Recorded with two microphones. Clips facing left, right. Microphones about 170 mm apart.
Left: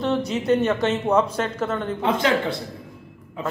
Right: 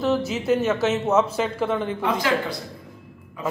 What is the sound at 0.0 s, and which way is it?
A man's voice, 5° right (ahead or behind).